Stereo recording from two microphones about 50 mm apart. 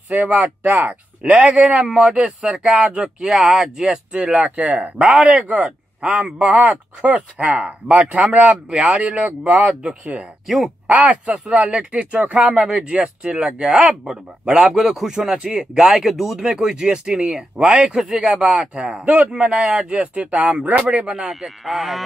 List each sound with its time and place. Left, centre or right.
0.2 s speech: right
1.2 s speech: centre
10.4 s speech: centre
10.9 s speech: right
21.1 s speech: centre